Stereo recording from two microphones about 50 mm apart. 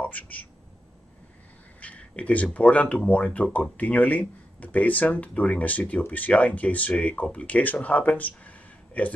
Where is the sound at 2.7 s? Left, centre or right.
Left.